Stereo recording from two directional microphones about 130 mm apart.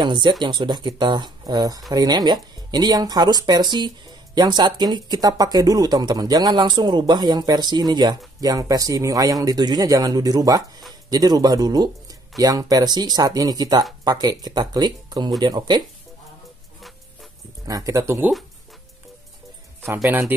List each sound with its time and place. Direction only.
0.0 s speech: 35° right (ahead or behind)
17.6 s speech: 25° right (ahead or behind)
19.9 s speech: 20° right (ahead or behind)